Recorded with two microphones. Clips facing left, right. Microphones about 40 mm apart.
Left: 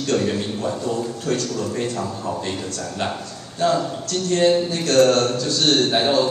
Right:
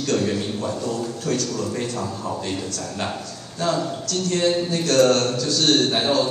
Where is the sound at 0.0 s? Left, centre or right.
Left.